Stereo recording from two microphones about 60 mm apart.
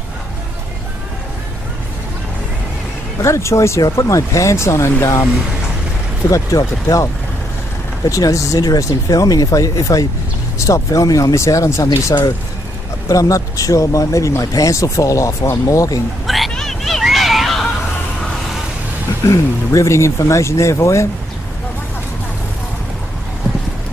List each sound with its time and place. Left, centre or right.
3.2 s speech: left
6.3 s speech: left
8.0 s speech: left
13.1 s speech: left
14.4 s speech: left
16.3 s a sound: centre
19.2 s speech: left